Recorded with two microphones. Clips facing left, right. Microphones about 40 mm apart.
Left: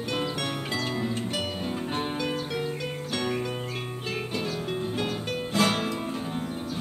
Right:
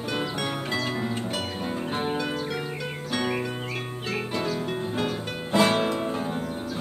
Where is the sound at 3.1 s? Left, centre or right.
Centre.